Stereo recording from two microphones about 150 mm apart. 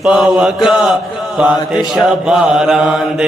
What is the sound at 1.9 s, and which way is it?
Speech, 5° right (ahead or behind).